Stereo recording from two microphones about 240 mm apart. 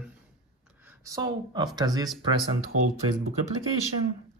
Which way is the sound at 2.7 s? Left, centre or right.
Right.